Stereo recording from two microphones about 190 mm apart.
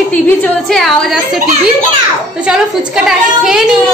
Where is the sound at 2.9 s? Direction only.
5° right (ahead or behind).